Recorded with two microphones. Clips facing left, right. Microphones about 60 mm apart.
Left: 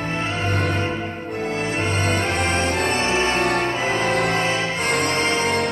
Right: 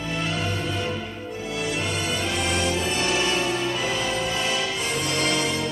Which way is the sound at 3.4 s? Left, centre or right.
Left.